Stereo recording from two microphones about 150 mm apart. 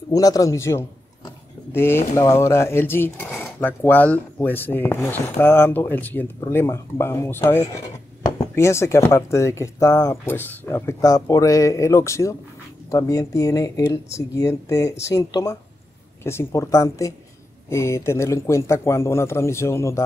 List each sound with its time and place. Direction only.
0.1 s a man's voice: 25° left (ahead or behind)